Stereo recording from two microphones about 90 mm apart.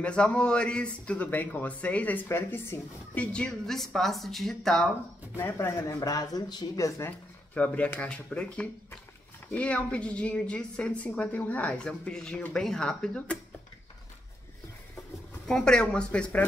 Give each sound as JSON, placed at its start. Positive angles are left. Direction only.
{"t": 0.0, "sound": "a woman's voice", "side_deg": 10}
{"t": 2.2, "sound": "speech", "side_deg": 25}
{"t": 3.2, "sound": "a woman's voice", "side_deg": 10}
{"t": 5.3, "sound": "speech", "side_deg": 25}
{"t": 7.0, "sound": "a woman's voice", "side_deg": 20}
{"t": 15.4, "sound": "a woman's voice", "side_deg": 5}